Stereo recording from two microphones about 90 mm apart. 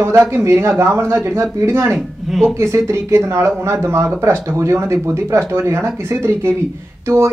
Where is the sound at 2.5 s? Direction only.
30° right (ahead or behind).